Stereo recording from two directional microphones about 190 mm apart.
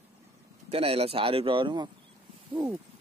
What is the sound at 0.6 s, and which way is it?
Speech, 30° right (ahead or behind).